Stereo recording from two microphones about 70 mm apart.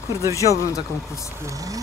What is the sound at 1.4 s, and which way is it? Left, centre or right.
Speech, right.